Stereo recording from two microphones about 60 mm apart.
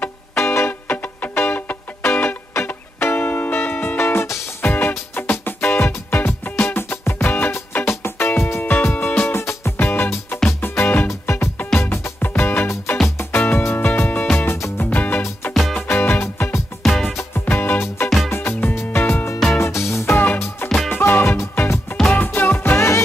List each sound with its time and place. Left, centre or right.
0.4 s music: left
7.8 s music: left
8.6 s music: left
9.3 s music: left
16.8 s music: centre
17.3 s music: left
19.6 s music: left
20.6 s music: centre
20.9 s music: left
22.2 s music: left